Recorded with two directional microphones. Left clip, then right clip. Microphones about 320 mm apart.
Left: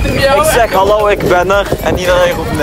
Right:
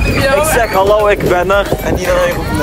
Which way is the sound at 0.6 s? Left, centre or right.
Centre.